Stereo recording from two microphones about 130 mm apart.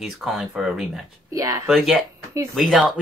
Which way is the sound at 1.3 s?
25° right (ahead or behind).